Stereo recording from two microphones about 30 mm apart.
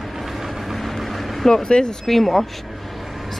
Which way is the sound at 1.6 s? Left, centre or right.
Left.